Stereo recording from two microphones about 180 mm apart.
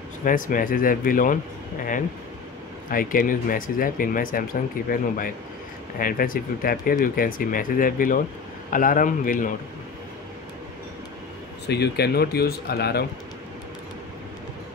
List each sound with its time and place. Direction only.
0.2 s speech: 50° left (ahead or behind)
2.9 s speech: 50° left (ahead or behind)
11.6 s speech: 65° left (ahead or behind)